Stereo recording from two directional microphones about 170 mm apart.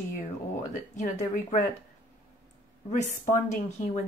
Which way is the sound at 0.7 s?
50° left (ahead or behind).